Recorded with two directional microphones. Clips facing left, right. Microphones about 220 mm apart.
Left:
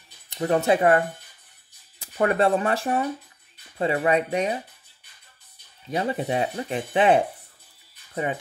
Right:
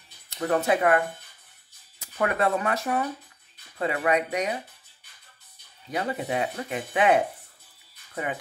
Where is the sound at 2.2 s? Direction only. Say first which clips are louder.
Left 4 dB; 30° left (ahead or behind).